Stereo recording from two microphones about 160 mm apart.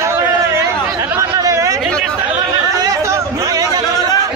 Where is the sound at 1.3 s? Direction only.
20° right (ahead or behind).